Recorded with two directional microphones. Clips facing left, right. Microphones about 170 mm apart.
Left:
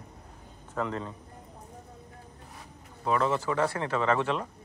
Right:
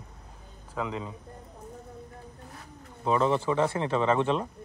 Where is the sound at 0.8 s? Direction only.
10° right (ahead or behind).